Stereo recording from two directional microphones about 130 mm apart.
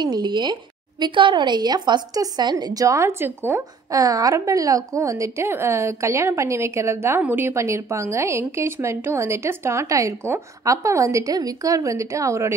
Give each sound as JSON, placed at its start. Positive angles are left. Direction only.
{"t": 0.0, "sound": "a woman's voice", "side_deg": -35}